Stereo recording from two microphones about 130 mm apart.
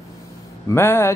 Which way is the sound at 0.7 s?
20° left (ahead or behind).